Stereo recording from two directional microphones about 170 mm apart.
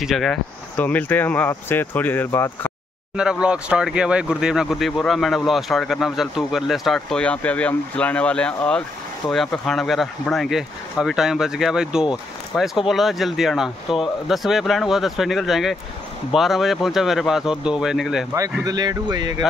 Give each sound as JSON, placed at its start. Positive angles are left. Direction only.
{"t": 0.0, "sound": "speech", "side_deg": 0}
{"t": 3.2, "sound": "speech", "side_deg": -5}
{"t": 18.6, "sound": "speech", "side_deg": -25}